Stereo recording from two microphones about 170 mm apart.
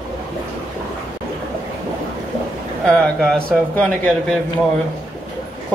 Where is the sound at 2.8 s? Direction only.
5° left (ahead or behind).